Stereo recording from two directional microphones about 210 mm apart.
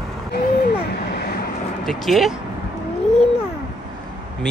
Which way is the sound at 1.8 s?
Centre (ahead or behind).